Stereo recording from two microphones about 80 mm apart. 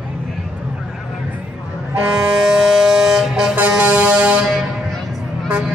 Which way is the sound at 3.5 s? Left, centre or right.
Centre.